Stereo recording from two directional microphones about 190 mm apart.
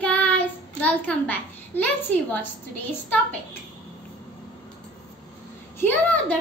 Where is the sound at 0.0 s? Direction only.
5° left (ahead or behind).